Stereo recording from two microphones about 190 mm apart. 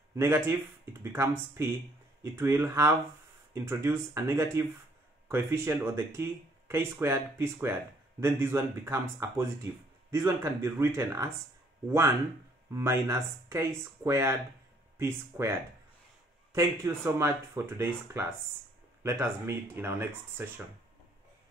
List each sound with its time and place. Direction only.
0.1 s speech: 15° right (ahead or behind)
12.7 s speech: 15° right (ahead or behind)
16.5 s speech: 15° right (ahead or behind)